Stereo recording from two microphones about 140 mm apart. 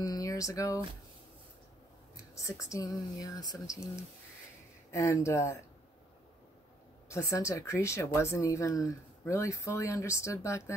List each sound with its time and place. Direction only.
0.0 s a sound: 25° left (ahead or behind)
2.7 s speech: 25° left (ahead or behind)
7.1 s speech: 20° left (ahead or behind)